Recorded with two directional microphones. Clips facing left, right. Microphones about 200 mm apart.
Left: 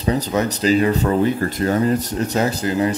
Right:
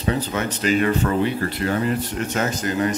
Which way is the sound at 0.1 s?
40° left (ahead or behind).